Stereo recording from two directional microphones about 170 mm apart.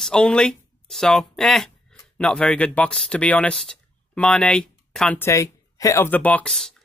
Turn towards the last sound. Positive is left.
turn(degrees=0)  # may be behind; listen again after turning